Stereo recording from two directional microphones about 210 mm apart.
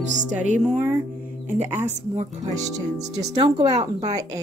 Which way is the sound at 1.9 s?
35° right (ahead or behind).